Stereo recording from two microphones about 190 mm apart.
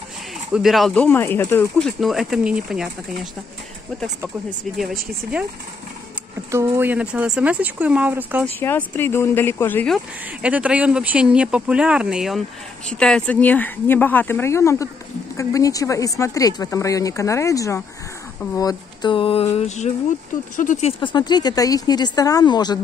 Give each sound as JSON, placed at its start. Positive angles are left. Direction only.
{"t": 0.5, "sound": "speech", "side_deg": 0}
{"t": 4.7, "sound": "speech", "side_deg": 5}
{"t": 6.5, "sound": "speech", "side_deg": -10}
{"t": 8.5, "sound": "speech", "side_deg": 10}
{"t": 9.9, "sound": "speech", "side_deg": -5}
{"t": 21.0, "sound": "speech", "side_deg": 25}